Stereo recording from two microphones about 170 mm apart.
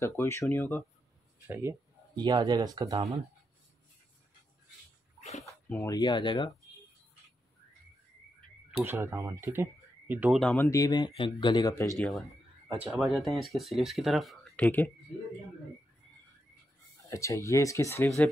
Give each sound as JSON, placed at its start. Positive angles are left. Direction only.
{"t": 0.0, "sound": "speech", "side_deg": 15}
{"t": 1.5, "sound": "speech", "side_deg": -15}
{"t": 2.2, "sound": "speech", "side_deg": -25}
{"t": 5.4, "sound": "a sound", "side_deg": 10}
{"t": 5.9, "sound": "speech", "side_deg": 25}
{"t": 8.8, "sound": "speech", "side_deg": -15}
{"t": 10.4, "sound": "speech", "side_deg": 10}
{"t": 12.0, "sound": "speech", "side_deg": 0}
{"t": 17.1, "sound": "speech", "side_deg": 15}